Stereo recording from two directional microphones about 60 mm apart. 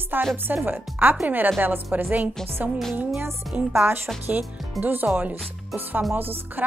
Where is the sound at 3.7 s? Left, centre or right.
Right.